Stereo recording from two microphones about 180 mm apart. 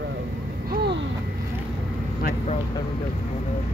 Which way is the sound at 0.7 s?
60° right (ahead or behind).